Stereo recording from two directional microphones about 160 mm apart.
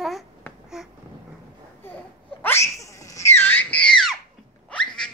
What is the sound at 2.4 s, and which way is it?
Screaming, 15° left (ahead or behind).